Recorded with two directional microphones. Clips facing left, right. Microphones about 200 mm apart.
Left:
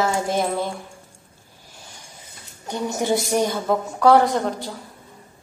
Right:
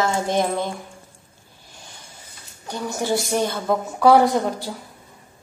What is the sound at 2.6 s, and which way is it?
Speech, 20° left (ahead or behind).